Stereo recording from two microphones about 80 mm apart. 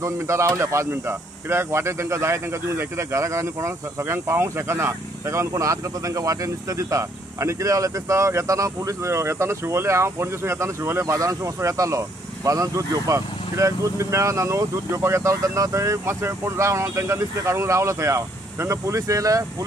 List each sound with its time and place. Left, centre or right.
0.0 s speech: right